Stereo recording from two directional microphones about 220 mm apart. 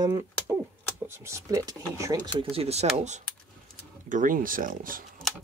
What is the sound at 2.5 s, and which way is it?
Speech, 30° right (ahead or behind).